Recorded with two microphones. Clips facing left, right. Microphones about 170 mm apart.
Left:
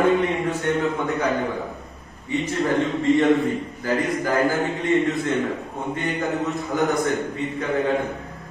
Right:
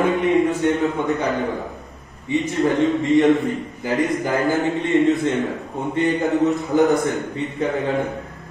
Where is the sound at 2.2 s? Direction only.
20° right (ahead or behind).